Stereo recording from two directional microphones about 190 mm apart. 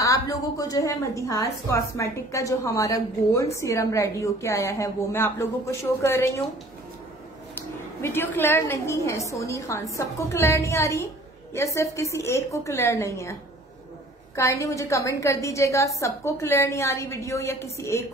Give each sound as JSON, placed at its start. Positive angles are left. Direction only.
{"t": 0.0, "sound": "a woman's voice", "side_deg": 20}
{"t": 8.0, "sound": "a woman's voice", "side_deg": 10}